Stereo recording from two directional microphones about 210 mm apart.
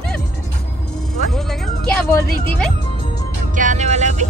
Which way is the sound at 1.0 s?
Centre (ahead or behind).